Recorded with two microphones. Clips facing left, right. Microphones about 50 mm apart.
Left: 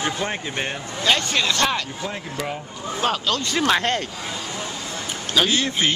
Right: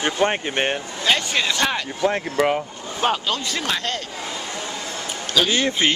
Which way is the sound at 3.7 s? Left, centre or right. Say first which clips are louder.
Left 6 dB; left.